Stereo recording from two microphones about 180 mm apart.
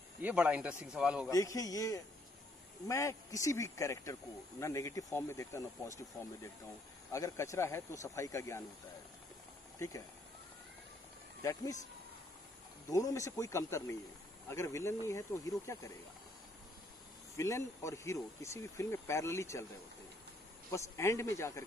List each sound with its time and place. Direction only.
0.2 s speech: 10° right (ahead or behind)
1.3 s a man's voice: 20° left (ahead or behind)
11.4 s a man's voice: 20° left (ahead or behind)
12.9 s speech: 15° left (ahead or behind)
17.4 s speech: 15° left (ahead or behind)
20.7 s speech: 15° left (ahead or behind)